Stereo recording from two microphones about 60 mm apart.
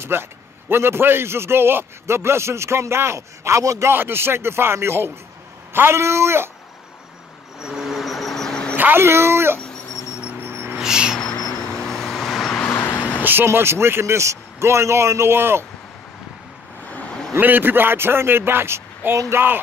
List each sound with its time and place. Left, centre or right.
0.0 s a man's voice: right
3.8 s a man's voice: right
7.6 s insect: centre
8.7 s speech: right
10.4 s a sound: right
10.8 s a sound: centre
11.8 s vehicle: centre
12.6 s vehicle: left
13.2 s a man's voice: right
17.4 s speech: right